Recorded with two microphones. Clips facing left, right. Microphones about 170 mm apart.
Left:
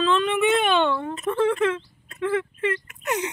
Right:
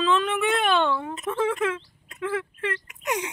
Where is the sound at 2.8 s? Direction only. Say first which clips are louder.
Left 2 dB; 10° right (ahead or behind).